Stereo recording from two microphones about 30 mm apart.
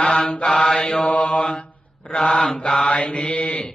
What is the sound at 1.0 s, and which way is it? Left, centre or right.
Mantra, left.